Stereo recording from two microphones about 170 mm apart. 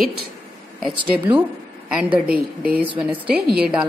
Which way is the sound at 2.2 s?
60° right (ahead or behind).